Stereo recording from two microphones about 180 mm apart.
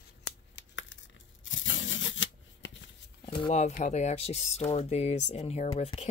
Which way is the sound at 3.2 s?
30° left (ahead or behind).